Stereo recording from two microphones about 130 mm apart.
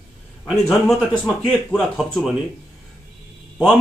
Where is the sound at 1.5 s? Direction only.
5° left (ahead or behind).